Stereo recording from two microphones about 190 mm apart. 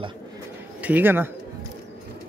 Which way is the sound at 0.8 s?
10° right (ahead or behind).